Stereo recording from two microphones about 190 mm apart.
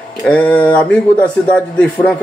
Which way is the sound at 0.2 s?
10° left (ahead or behind).